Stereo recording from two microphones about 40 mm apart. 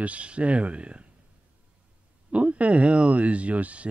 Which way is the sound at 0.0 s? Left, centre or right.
Right.